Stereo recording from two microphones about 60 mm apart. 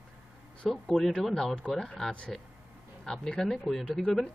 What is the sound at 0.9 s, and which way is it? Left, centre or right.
Speech, centre.